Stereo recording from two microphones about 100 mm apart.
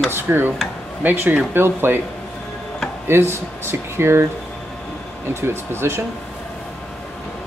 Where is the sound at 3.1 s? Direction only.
25° right (ahead or behind).